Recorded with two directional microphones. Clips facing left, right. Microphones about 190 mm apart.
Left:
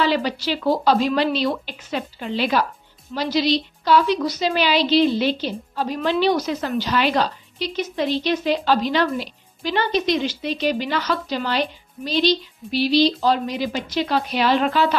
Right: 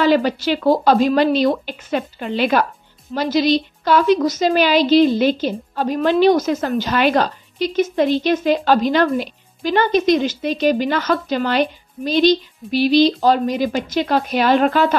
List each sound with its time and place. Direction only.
0.0 s a woman's voice: 50° right (ahead or behind)